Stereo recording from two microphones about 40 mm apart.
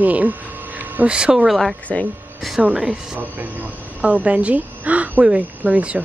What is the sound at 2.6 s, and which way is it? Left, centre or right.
Speech, right.